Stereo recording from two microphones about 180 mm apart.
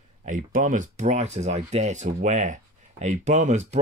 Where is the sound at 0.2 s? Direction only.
45° right (ahead or behind).